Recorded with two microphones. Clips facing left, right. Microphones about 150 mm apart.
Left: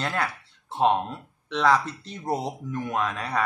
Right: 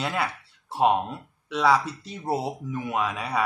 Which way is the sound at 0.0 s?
5° right (ahead or behind).